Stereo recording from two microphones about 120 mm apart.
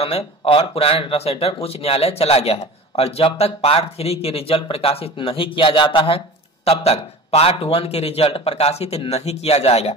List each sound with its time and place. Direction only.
0.0 s speech: 55° left (ahead or behind)